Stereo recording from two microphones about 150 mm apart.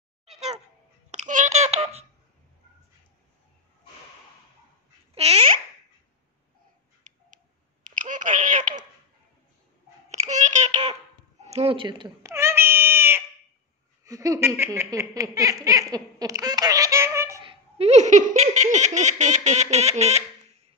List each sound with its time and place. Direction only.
1.1 s telephone dialing: 55° right (ahead or behind)
5.1 s babbling: 40° right (ahead or behind)
7.0 s tick: 60° right (ahead or behind)
7.8 s a sound: 60° right (ahead or behind)
10.1 s a sound: 50° right (ahead or behind)
11.4 s speech: 45° right (ahead or behind)
12.2 s a sound: 20° right (ahead or behind)
14.0 s baby laughter: 20° right (ahead or behind)
17.5 s laughter: 45° right (ahead or behind)